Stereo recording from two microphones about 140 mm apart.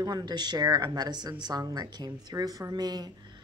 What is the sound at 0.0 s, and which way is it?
A woman's voice, 30° right (ahead or behind).